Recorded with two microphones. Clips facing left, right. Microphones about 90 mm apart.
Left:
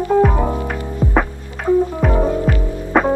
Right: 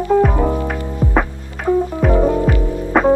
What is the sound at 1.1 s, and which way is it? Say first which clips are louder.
Music: left 1 dB; centre (ahead or behind).